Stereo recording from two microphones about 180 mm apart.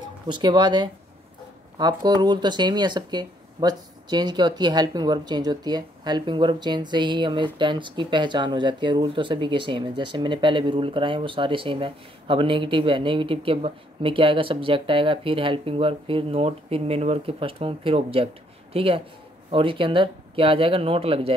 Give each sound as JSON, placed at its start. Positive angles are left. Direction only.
{"t": 0.3, "sound": "speech", "side_deg": -25}